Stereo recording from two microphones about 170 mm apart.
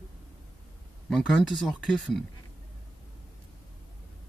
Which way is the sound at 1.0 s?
5° left (ahead or behind).